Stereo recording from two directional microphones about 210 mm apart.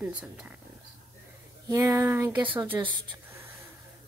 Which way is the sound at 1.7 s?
15° right (ahead or behind).